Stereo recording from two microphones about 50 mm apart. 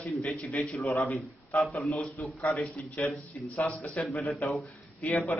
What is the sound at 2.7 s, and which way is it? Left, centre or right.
A man's voice, left.